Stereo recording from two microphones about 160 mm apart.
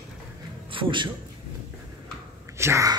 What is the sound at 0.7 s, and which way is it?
Speech, 30° right (ahead or behind).